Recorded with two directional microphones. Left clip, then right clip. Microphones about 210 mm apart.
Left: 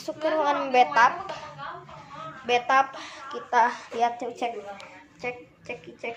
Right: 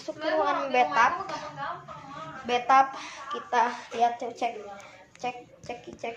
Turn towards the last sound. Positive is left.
turn(degrees=-10)  # may be behind; listen again after turning